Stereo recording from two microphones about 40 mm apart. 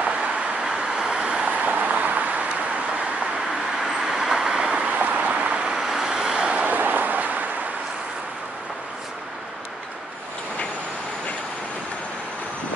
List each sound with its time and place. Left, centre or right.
0.0 s vehicle: right
0.7 s vehicle: centre
1.5 s vehicle: right
3.8 s vehicle: centre
4.8 s vehicle: right
5.8 s vehicle: centre
6.4 s a sound: right
6.7 s a sound: right